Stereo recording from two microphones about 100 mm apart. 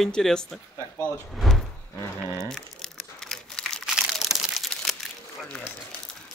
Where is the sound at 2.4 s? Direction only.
5° left (ahead or behind).